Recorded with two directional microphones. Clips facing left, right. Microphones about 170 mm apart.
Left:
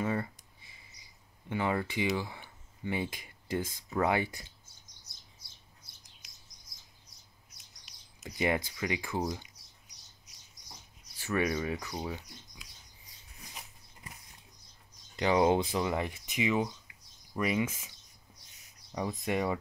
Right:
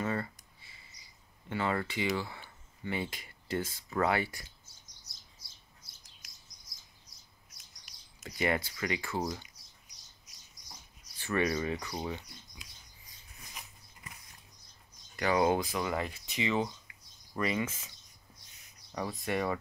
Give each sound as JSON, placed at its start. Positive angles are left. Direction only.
{"t": 0.0, "sound": "a sound", "side_deg": 10}
{"t": 1.5, "sound": "speech", "side_deg": 15}
{"t": 8.2, "sound": "speech", "side_deg": 15}
{"t": 11.1, "sound": "speech", "side_deg": 10}
{"t": 15.1, "sound": "speech", "side_deg": 20}